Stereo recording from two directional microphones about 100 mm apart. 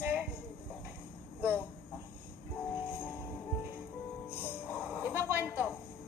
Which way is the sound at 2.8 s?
20° left (ahead or behind).